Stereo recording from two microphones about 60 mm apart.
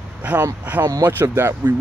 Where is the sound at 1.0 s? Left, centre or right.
Right.